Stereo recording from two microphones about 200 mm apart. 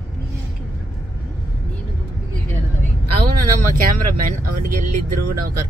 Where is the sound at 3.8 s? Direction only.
45° right (ahead or behind).